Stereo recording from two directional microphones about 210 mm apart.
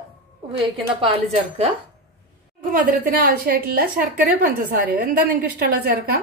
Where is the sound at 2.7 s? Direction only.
40° right (ahead or behind).